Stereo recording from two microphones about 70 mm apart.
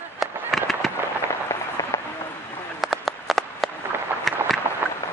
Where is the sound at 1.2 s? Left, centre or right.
Left.